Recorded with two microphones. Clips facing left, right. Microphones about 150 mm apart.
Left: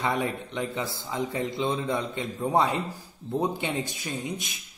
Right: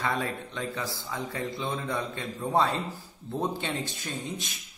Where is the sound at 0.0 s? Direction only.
15° left (ahead or behind).